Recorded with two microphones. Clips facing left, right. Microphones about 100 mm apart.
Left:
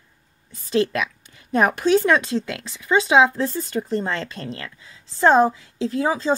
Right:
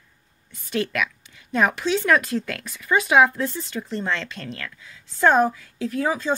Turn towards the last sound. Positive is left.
turn(degrees=30)  # may be behind; listen again after turning